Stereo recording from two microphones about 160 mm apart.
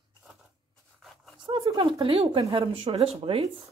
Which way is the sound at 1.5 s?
25° right (ahead or behind).